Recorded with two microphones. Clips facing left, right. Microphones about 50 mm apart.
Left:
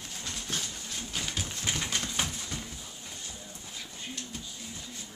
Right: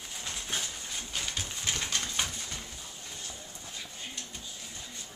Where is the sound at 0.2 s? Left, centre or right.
Centre.